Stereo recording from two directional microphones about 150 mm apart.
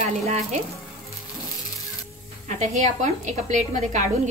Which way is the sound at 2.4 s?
55° right (ahead or behind).